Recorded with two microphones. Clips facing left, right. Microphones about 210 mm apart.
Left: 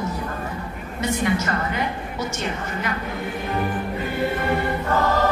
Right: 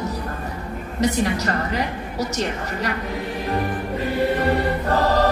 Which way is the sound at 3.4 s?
35° right (ahead or behind).